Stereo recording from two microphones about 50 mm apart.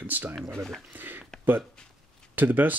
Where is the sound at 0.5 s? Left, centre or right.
Centre.